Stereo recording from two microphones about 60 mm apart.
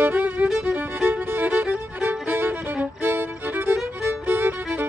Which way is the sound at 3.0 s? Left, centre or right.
Right.